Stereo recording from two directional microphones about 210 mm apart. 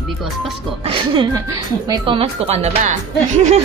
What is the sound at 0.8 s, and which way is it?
A woman's voice, 25° right (ahead or behind).